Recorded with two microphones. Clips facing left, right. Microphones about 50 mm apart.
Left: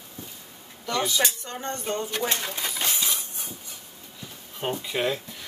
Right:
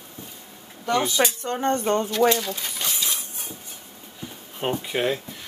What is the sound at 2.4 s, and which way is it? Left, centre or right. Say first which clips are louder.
Speech: even; left.